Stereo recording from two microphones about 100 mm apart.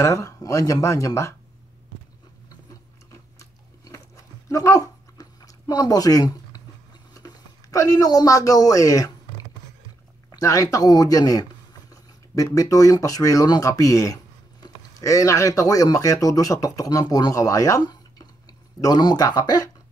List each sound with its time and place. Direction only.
0.0 s speech: 30° left (ahead or behind)
3.1 s a sound: 30° left (ahead or behind)
10.3 s speech: 35° left (ahead or behind)